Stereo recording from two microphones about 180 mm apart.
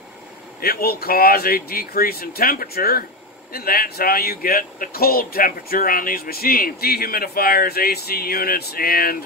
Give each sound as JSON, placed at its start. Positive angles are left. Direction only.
{"t": 0.6, "sound": "speech", "side_deg": 60}